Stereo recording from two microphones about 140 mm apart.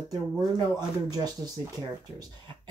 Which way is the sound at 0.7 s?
30° right (ahead or behind).